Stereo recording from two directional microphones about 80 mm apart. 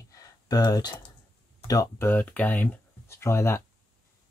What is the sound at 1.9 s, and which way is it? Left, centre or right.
Speech, left.